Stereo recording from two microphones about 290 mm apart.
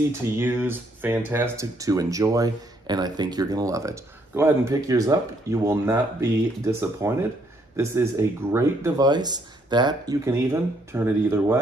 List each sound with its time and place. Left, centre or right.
0.2 s speech: centre